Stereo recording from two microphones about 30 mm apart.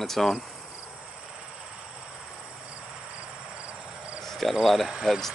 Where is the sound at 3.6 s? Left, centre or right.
Right.